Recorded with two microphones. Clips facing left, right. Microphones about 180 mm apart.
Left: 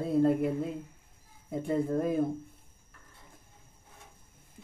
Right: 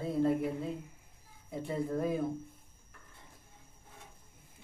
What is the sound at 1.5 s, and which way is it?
Speech, 50° left (ahead or behind).